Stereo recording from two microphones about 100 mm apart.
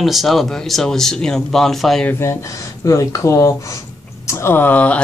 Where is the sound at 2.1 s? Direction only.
25° left (ahead or behind).